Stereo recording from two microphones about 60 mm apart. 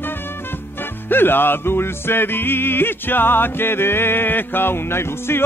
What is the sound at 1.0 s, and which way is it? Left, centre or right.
Music, left.